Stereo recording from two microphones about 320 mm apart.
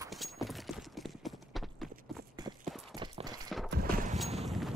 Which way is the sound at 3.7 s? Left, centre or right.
Right.